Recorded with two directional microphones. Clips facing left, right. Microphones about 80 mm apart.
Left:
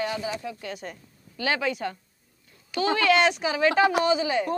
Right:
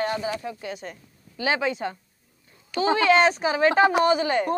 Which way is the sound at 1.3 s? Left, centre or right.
Right.